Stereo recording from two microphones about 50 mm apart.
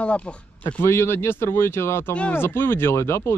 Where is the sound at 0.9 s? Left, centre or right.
Left.